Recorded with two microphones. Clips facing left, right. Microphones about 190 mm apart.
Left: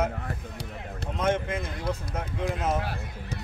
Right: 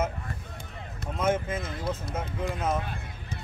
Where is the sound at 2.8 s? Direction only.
75° left (ahead or behind).